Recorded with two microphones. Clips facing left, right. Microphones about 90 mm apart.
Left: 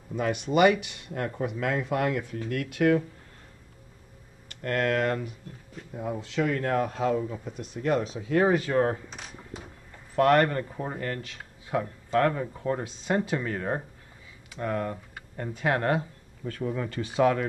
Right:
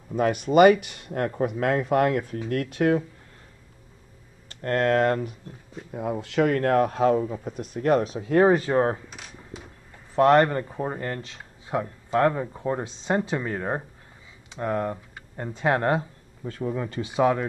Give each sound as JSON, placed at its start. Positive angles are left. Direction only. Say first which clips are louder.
{"t": 0.1, "sound": "speech", "louder": "right 5 dB", "side_deg": -45}
{"t": 4.5, "sound": "speech", "louder": "right 4 dB", "side_deg": -35}
{"t": 5.9, "sound": "speech", "louder": "right 5 dB", "side_deg": -55}
{"t": 10.1, "sound": "speech", "louder": "right 3 dB", "side_deg": -25}